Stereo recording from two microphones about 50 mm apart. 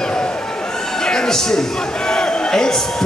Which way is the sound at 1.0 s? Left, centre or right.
Centre.